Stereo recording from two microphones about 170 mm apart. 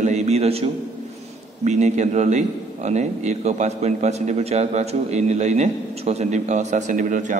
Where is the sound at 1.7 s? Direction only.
45° right (ahead or behind).